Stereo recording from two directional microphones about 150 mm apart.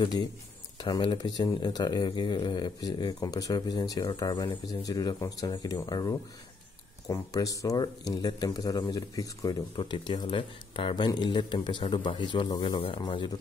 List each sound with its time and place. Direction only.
0.7 s speech: 30° left (ahead or behind)